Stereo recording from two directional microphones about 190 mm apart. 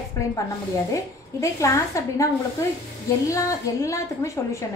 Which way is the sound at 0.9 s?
15° left (ahead or behind).